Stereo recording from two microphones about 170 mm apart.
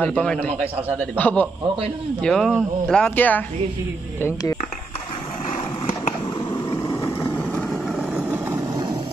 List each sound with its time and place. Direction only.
0.0 s a man's voice: 5° left (ahead or behind)
6.9 s vehicle: 15° left (ahead or behind); by 8.4 s 5° right (ahead or behind)